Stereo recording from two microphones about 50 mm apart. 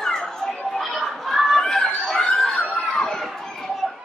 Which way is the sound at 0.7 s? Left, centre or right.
Centre.